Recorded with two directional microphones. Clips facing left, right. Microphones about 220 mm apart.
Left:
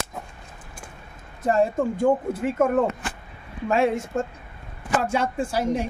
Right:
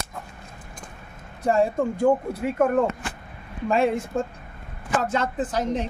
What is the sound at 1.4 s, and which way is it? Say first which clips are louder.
Speech: even; centre (ahead or behind).